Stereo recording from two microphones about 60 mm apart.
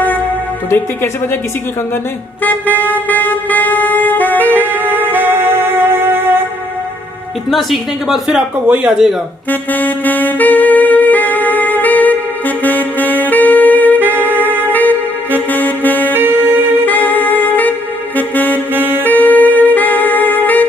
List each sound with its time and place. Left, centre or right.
0.7 s a woman's voice: left
2.4 s music: left
5.2 s music: right
7.5 s speech: centre
8.6 s speech: right
9.5 s saxophone: left
16.1 s saxophone: right
16.8 s saxophone: left
18.7 s saxophone: right
19.0 s music: left